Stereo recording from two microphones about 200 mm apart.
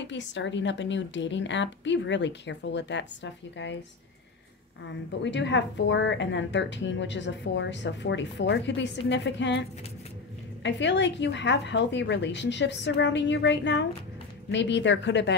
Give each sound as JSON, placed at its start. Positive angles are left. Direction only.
{"t": 0.0, "sound": "a woman's voice", "side_deg": 65}
{"t": 4.8, "sound": "a woman's voice", "side_deg": 60}